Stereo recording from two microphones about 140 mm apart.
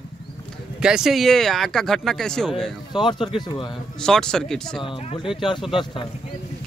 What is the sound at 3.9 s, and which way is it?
Speech, 5° left (ahead or behind).